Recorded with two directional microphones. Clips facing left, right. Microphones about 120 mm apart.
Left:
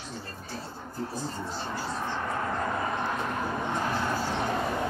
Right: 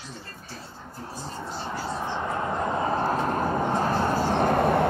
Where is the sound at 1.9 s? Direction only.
20° right (ahead or behind); by 4.9 s 60° right (ahead or behind).